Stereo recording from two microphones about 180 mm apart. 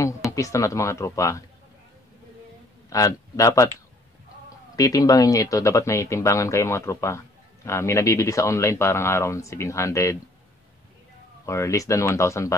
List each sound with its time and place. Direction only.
0.0 s speech: 15° left (ahead or behind)
2.9 s speech: 20° left (ahead or behind)
4.7 s speech: 20° left (ahead or behind)
11.4 s speech: 15° left (ahead or behind)